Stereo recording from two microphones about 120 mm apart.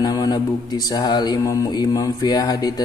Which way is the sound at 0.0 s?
30° left (ahead or behind).